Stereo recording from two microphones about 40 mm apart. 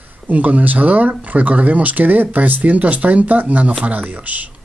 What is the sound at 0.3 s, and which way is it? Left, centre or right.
Speech, right.